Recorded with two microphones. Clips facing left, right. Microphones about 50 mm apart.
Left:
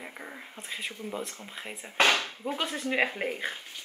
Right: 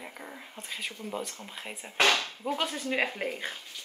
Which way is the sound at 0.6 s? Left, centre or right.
Centre.